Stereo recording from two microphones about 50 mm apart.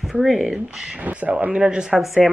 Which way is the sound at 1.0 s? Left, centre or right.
Right.